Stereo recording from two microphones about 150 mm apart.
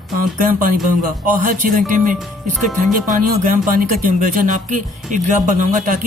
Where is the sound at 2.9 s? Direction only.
65° right (ahead or behind).